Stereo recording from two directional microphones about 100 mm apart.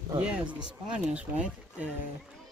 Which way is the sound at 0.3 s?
10° right (ahead or behind).